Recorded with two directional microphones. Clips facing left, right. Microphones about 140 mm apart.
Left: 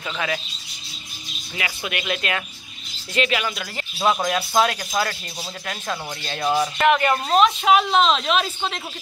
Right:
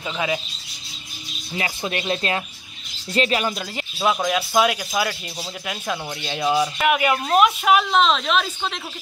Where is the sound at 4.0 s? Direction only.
Centre (ahead or behind).